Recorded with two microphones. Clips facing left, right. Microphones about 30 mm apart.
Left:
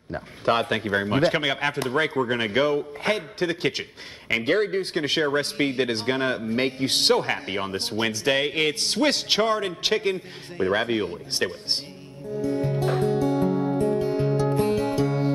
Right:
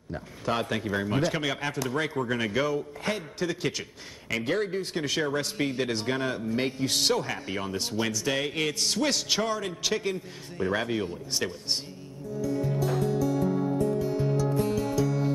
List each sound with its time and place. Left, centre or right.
0.1 s speech: left
12.4 s music: left